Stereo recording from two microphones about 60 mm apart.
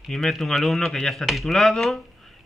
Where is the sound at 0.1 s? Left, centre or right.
Centre.